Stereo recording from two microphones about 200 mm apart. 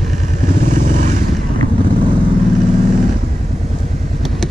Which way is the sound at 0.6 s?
40° right (ahead or behind).